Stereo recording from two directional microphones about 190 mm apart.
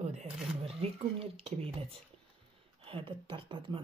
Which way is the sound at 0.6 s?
30° right (ahead or behind).